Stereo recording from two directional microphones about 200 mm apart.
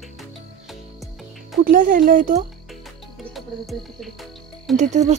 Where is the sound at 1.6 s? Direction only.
40° right (ahead or behind).